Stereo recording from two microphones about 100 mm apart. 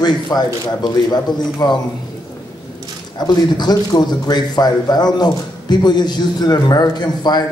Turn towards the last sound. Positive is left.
turn(degrees=45)  # may be behind; listen again after turning